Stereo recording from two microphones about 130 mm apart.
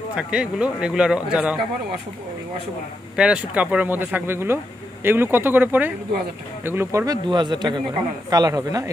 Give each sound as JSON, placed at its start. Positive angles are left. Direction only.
{"t": 0.1, "sound": "speech", "side_deg": -5}
{"t": 3.2, "sound": "speech", "side_deg": -10}
{"t": 7.2, "sound": "a man's voice", "side_deg": -35}